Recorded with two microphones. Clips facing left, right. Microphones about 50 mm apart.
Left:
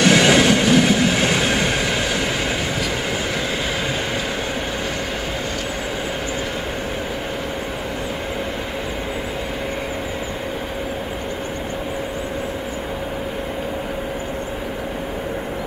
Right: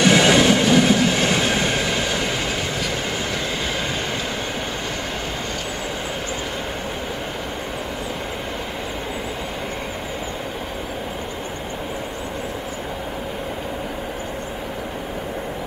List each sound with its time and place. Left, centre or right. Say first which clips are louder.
0.0 s train: left 1 dB; centre